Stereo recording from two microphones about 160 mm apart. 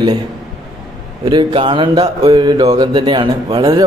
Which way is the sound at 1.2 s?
30° right (ahead or behind).